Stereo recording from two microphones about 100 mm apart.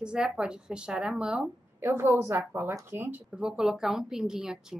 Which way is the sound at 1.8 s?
25° right (ahead or behind).